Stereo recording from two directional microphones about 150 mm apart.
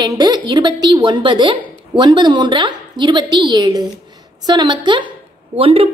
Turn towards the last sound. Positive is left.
turn(degrees=-40)  # may be behind; listen again after turning